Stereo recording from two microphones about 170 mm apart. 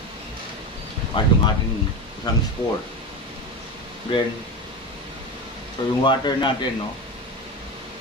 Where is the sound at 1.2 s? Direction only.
30° left (ahead or behind).